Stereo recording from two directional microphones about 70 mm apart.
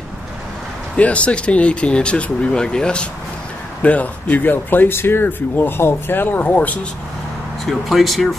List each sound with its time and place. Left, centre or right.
0.9 s speech: centre
7.6 s speech: centre